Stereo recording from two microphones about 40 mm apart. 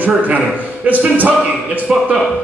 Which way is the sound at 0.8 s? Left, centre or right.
Right.